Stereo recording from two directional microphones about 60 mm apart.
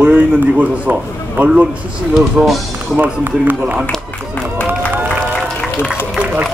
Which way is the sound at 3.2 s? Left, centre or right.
Right.